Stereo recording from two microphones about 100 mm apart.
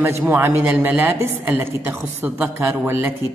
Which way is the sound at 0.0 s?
25° right (ahead or behind).